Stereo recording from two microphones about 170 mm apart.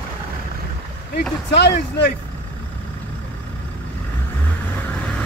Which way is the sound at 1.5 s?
80° left.